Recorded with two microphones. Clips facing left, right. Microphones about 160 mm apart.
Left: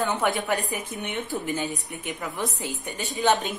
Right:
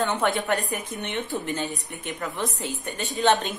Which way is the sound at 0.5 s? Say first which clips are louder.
Right 1 dB; centre (ahead or behind).